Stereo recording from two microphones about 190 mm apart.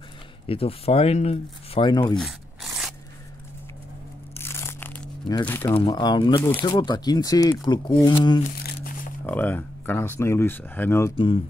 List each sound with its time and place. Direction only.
0.5 s speech: 30° left (ahead or behind)
2.1 s a sound: centre (ahead or behind)
4.3 s crushing: 10° left (ahead or behind)
5.4 s speech: 10° left (ahead or behind)
5.8 s speech: 25° left (ahead or behind)
8.8 s a sound: 45° left (ahead or behind)
9.2 s speech: 10° left (ahead or behind)
11.1 s speech: 25° left (ahead or behind)